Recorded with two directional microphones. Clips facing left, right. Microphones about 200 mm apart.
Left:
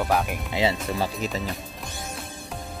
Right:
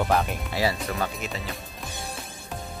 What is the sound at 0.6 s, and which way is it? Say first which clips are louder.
Speech: left 2 dB; 20° left (ahead or behind).